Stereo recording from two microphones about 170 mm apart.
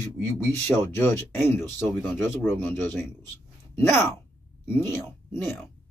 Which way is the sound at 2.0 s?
5° right (ahead or behind).